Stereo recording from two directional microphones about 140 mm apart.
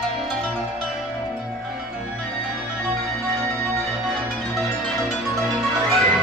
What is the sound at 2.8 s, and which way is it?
Music, 5° left (ahead or behind).